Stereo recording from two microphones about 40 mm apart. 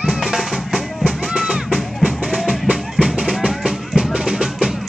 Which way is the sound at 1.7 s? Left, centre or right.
Centre.